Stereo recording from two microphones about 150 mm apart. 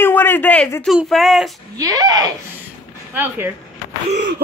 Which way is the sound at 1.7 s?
25° right (ahead or behind).